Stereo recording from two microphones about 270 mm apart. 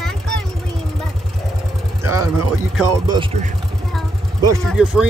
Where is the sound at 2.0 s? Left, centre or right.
Centre.